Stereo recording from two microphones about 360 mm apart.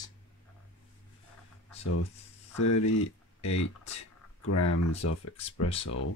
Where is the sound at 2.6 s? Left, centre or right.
Left.